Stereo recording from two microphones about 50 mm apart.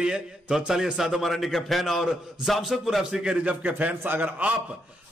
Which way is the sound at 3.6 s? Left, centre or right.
Right.